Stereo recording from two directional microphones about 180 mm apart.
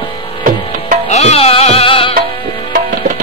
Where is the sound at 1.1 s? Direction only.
35° left (ahead or behind).